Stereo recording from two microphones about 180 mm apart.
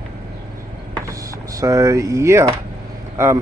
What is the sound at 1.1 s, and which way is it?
Power windows, 20° right (ahead or behind).